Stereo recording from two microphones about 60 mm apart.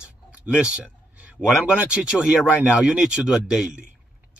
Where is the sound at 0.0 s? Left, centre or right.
Centre.